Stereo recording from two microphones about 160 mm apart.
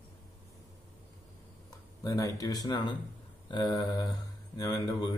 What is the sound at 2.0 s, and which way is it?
Speech, 20° left (ahead or behind).